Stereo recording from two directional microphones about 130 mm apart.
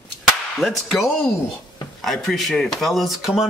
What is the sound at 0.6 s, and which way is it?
Speech, centre (ahead or behind).